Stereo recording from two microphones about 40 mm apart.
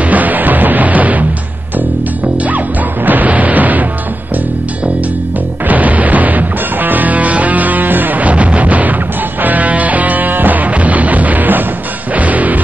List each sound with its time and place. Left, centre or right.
0.0 s music: right
3.1 s music: right
5.7 s music: right